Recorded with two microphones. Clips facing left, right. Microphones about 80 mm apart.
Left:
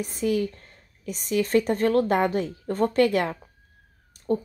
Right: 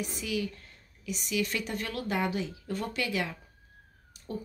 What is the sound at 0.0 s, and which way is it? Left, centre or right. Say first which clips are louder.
Speech: left 8 dB; left.